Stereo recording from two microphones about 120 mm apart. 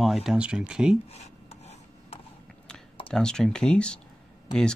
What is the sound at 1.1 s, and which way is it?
Rub, 65° left (ahead or behind).